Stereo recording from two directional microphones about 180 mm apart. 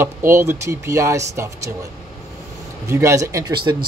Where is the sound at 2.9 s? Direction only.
15° right (ahead or behind).